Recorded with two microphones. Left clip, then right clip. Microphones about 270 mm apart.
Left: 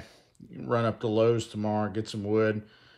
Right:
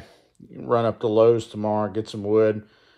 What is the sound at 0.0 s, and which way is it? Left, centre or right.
Speech, centre.